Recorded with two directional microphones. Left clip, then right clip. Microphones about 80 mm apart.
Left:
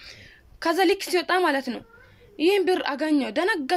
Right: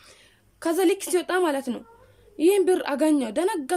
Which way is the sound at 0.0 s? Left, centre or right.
Right.